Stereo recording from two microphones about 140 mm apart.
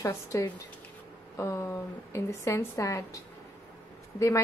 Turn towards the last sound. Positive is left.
turn(degrees=20)  # may be behind; listen again after turning